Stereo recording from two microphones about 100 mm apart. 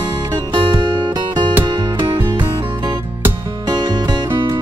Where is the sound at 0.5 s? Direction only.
50° right (ahead or behind).